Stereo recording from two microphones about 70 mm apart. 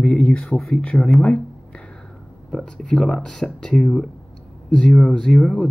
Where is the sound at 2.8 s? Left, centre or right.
Centre.